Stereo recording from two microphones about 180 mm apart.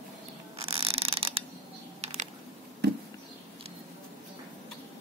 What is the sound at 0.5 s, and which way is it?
Mechanisms, 35° right (ahead or behind).